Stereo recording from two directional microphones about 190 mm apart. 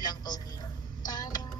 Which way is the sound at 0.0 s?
20° left (ahead or behind).